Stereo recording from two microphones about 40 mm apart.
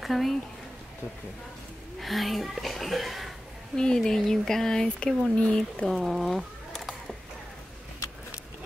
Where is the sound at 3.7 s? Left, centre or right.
Centre.